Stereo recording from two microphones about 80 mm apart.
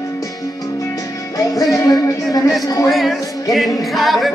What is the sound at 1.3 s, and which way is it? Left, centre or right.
Music, left.